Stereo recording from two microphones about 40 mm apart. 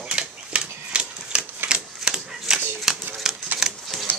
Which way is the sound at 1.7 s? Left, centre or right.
Right.